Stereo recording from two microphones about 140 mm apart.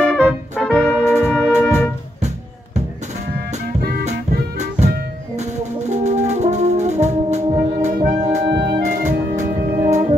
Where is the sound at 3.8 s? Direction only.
90° right.